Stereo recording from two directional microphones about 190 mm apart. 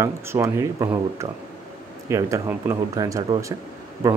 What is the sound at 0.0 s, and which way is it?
Speech, 15° right (ahead or behind).